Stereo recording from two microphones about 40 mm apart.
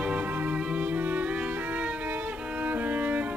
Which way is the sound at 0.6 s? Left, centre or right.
Right.